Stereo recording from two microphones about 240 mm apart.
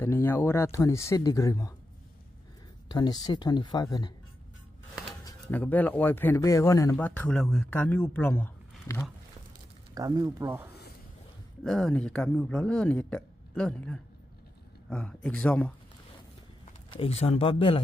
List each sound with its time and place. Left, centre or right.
0.0 s speech: centre
2.9 s speech: centre
5.2 s speech: centre
9.9 s speech: centre
11.6 s speech: centre
16.9 s speech: left